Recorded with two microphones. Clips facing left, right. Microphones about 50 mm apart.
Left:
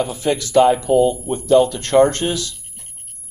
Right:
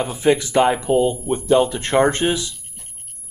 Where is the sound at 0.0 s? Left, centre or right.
Right.